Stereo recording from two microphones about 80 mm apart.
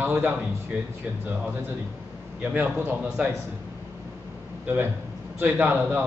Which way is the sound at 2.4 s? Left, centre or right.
Right.